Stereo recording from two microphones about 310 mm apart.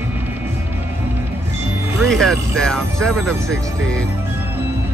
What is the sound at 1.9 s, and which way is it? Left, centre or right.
Speech, centre.